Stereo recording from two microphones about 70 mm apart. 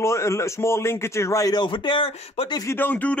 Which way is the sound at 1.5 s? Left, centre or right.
Left.